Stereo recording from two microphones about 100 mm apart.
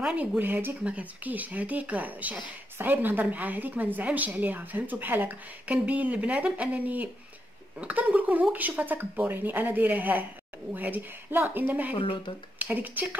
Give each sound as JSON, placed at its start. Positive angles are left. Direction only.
{"t": 0.0, "sound": "a woman's voice", "side_deg": -10}
{"t": 11.9, "sound": "speech", "side_deg": 60}
{"t": 12.5, "sound": "speech", "side_deg": -15}